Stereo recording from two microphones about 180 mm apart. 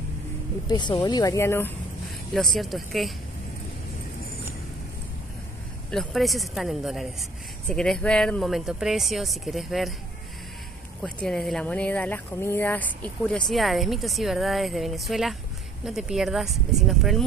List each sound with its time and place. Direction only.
0.7 s speech: 25° left (ahead or behind)
2.3 s speech: centre (ahead or behind)
5.9 s speech: centre (ahead or behind)
11.0 s speech: 5° left (ahead or behind)